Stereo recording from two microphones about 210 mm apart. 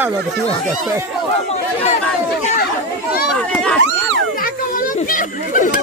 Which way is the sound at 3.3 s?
Centre (ahead or behind).